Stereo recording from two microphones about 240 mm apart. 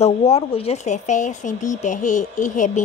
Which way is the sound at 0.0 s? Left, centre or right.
Left.